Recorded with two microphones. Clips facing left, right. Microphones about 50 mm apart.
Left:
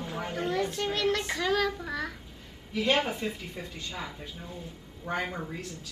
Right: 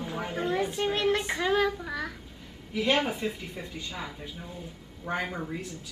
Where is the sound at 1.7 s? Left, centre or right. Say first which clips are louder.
Even; centre.